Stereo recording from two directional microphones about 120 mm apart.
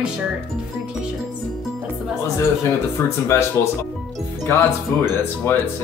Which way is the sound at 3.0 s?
25° left (ahead or behind).